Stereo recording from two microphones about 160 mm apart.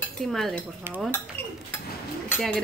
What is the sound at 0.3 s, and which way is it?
Speech, centre (ahead or behind).